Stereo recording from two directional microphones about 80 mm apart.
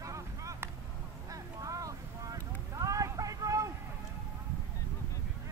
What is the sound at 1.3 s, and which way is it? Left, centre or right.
Boat, right.